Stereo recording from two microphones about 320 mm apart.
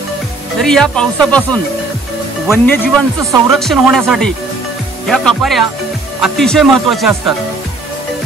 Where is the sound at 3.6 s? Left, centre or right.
Centre.